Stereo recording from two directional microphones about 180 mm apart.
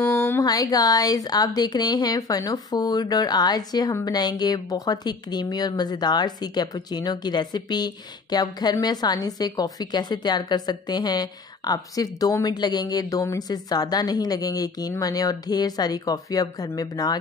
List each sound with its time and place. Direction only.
0.0 s speech: 15° left (ahead or behind)